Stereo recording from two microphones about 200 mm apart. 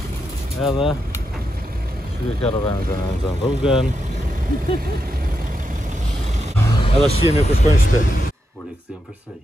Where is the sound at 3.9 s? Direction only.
35° right (ahead or behind).